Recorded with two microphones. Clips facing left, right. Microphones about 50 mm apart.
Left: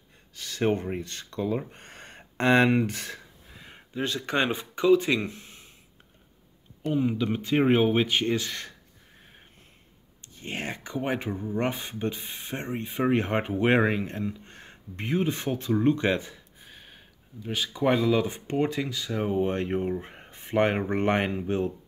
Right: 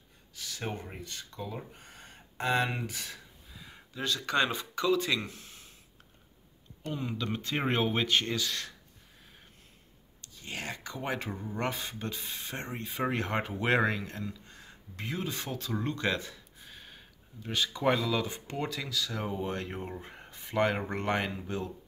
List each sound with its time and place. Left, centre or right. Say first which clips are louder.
0.3 s speech: left 12 dB; left
1.7 s a sound: left 5 dB; left
3.9 s speech: left 3 dB; left
6.8 s speech: left 9 dB; centre
8.3 s speech: left 5 dB; left
10.2 s speech: left 5 dB; left
14.4 s a sound: left 4 dB; left
15.0 s speech: left 8 dB; left